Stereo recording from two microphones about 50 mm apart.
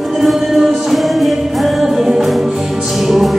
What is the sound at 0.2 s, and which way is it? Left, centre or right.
Music, centre.